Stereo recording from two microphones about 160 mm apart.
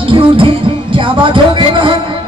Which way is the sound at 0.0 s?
30° right (ahead or behind).